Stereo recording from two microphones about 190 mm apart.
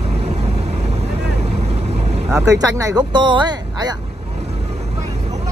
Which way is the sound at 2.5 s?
20° right (ahead or behind).